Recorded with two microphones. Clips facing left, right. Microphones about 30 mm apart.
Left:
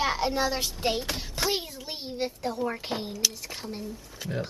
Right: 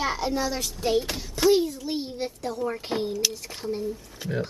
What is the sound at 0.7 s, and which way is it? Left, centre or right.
Child singing, left.